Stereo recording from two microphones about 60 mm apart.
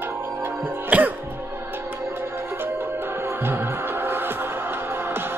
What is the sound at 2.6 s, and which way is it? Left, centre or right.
Music, right.